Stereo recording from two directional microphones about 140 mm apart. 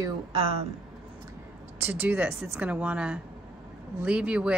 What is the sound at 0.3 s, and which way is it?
Speech, 40° right (ahead or behind).